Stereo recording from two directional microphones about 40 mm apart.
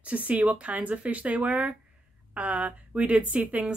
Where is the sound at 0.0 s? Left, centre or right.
Right.